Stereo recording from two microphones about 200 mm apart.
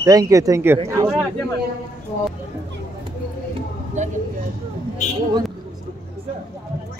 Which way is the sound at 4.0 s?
35° right (ahead or behind).